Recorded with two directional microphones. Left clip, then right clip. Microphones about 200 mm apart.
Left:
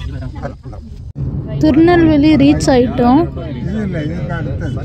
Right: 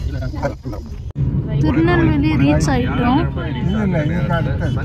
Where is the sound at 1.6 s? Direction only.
20° left (ahead or behind).